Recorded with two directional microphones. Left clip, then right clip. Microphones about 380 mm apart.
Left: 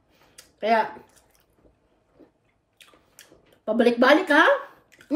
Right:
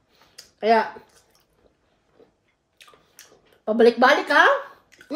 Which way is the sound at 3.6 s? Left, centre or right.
Centre.